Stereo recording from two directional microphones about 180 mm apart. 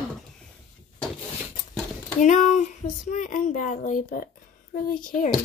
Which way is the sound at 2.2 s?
45° left (ahead or behind).